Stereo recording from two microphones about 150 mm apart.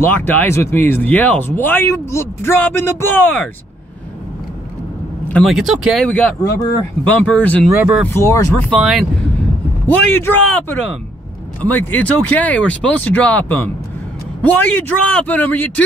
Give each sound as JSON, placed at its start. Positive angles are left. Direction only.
{"t": 0.0, "sound": "speech", "side_deg": 10}
{"t": 5.3, "sound": "speech", "side_deg": 0}
{"t": 6.0, "sound": "speech", "side_deg": 10}
{"t": 7.6, "sound": "speech", "side_deg": -5}
{"t": 8.1, "sound": "speech", "side_deg": 20}
{"t": 8.6, "sound": "speech", "side_deg": 0}
{"t": 9.8, "sound": "speech", "side_deg": 15}